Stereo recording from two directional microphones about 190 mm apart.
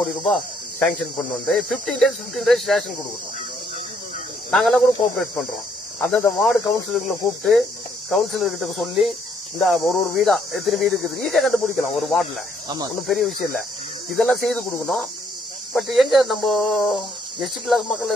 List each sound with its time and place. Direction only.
0.0 s speech: centre (ahead or behind)
4.5 s speech: centre (ahead or behind)
12.6 s speech: 20° right (ahead or behind)
13.0 s speech: centre (ahead or behind)